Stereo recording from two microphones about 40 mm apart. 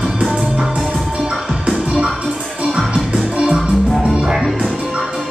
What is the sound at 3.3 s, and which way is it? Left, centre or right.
Music, centre.